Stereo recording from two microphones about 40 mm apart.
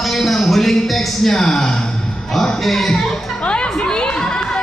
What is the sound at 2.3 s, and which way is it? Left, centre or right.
Speech, centre.